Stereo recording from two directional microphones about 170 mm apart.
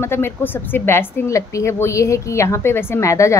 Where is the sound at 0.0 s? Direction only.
15° left (ahead or behind).